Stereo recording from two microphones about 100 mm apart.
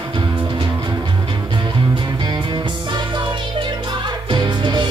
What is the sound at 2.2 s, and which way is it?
Music, 45° right (ahead or behind).